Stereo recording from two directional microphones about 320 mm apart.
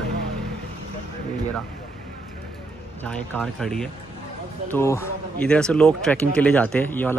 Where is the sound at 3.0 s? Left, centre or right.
Centre.